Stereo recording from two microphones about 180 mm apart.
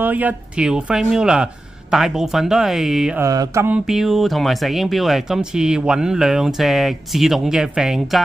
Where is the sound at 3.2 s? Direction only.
15° right (ahead or behind).